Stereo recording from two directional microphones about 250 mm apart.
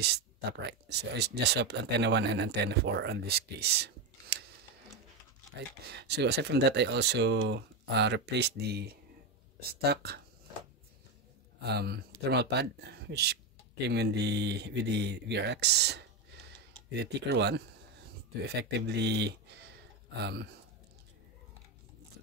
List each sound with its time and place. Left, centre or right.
0.0 s speech: right
5.9 s speech: right
11.6 s speech: right